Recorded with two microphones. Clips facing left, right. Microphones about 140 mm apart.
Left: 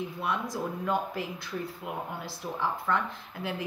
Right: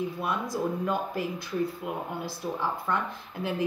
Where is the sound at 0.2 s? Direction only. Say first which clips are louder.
Even; 15° right (ahead or behind).